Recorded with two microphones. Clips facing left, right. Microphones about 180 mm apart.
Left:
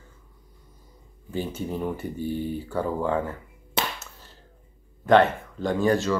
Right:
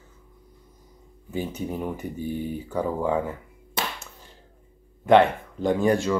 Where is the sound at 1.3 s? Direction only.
10° right (ahead or behind).